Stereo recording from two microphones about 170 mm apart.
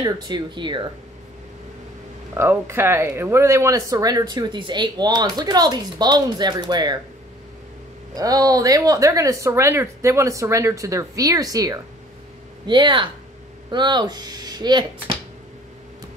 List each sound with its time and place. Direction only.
0.0 s speech: 25° right (ahead or behind)
2.3 s speech: 15° right (ahead or behind)
8.2 s speech: 20° right (ahead or behind)